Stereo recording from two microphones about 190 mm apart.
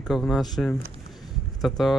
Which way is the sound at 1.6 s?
Centre (ahead or behind).